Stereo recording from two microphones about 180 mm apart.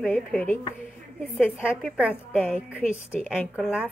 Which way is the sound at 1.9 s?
5° right (ahead or behind).